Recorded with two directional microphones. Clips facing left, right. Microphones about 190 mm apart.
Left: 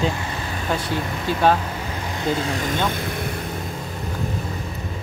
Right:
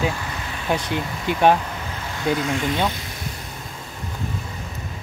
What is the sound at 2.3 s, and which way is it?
Speech, 35° left (ahead or behind).